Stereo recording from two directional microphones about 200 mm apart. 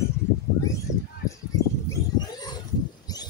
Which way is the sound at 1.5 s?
20° left (ahead or behind).